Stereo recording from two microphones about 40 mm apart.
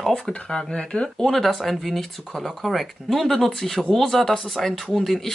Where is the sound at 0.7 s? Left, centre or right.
Left.